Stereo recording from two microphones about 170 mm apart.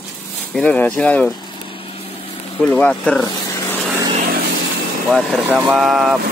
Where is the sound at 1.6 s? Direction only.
30° left (ahead or behind).